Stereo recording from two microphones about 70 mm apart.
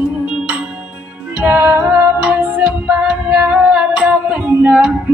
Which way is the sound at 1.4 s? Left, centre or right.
Right.